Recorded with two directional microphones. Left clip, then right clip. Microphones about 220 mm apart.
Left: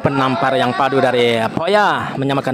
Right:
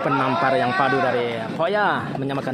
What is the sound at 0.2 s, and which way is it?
A man's voice, 20° left (ahead or behind).